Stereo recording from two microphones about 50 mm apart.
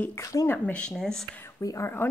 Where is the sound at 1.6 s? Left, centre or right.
Left.